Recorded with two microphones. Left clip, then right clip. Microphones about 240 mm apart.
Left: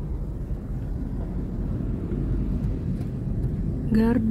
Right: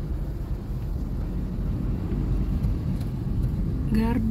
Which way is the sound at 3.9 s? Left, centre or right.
Centre.